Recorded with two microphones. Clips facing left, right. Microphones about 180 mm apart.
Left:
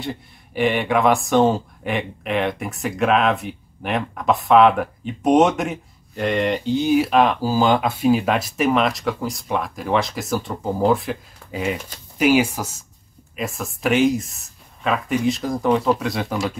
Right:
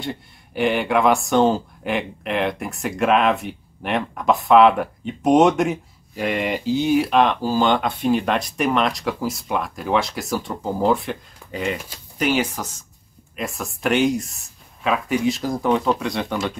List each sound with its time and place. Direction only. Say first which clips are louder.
0.0 s speech: even; centre (ahead or behind)